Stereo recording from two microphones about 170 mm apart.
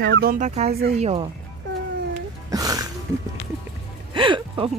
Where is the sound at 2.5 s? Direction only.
20° right (ahead or behind).